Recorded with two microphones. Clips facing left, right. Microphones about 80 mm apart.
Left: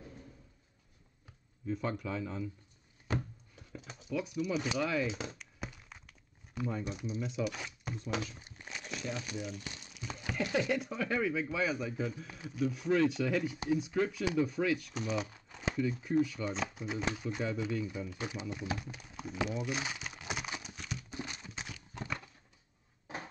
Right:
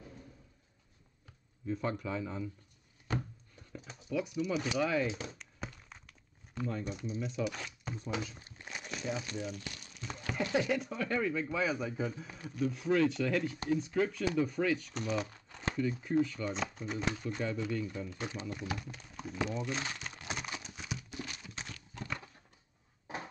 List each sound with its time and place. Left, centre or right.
1.7 s speech: centre
4.1 s speech: centre
5.4 s crumpling: centre
7.2 s speech: centre
8.4 s a sound: centre
8.8 s crumpling: centre
9.2 s speech: centre
9.8 s a sound: centre
10.4 s speech: right
10.7 s speech: centre
20.7 s horse: centre
21.1 s a sound: left
21.5 s horse: centre